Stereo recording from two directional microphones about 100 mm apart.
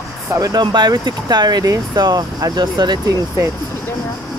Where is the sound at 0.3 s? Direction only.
40° right (ahead or behind).